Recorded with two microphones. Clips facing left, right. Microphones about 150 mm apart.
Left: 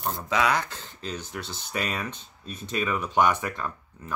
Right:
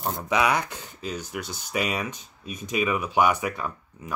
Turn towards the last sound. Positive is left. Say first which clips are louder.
# right 1 dB
turn(degrees=-10)  # may be behind; listen again after turning